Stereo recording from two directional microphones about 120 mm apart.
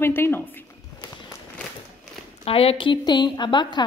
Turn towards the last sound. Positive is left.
turn(degrees=40)  # may be behind; listen again after turning